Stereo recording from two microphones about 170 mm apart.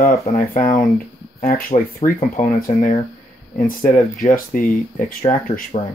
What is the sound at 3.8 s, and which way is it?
Speech, 50° left (ahead or behind).